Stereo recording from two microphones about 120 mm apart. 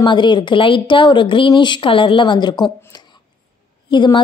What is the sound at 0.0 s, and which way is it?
A woman's voice, 40° left (ahead or behind).